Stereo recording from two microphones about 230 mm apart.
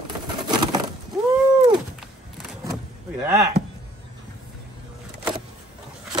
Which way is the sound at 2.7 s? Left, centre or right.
Centre.